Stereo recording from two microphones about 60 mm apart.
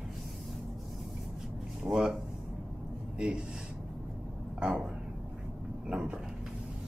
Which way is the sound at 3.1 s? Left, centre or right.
Centre.